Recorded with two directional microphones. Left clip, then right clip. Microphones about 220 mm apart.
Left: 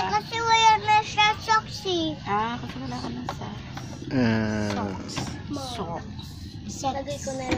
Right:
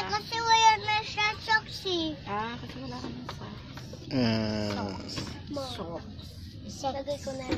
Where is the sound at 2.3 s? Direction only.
5° left (ahead or behind).